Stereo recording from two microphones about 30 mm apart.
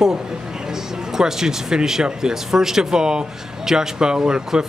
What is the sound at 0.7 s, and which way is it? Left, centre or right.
Music, centre.